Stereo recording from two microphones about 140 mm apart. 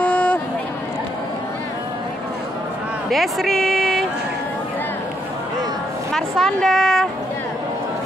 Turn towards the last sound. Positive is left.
turn(degrees=5)  # may be behind; listen again after turning